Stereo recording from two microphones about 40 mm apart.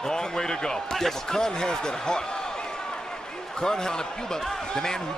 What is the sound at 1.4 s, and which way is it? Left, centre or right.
Speech, centre.